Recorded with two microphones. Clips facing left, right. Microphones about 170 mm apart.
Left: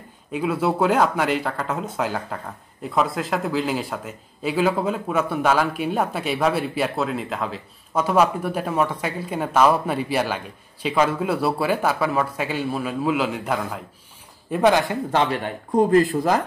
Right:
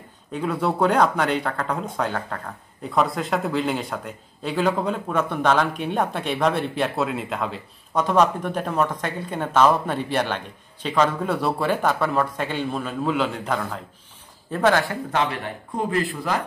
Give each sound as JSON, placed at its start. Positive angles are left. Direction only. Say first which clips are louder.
{"t": 0.3, "sound": "a man's voice", "louder": "left 2 dB", "side_deg": 5}
{"t": 15.7, "sound": "speech", "louder": "left 8 dB", "side_deg": 40}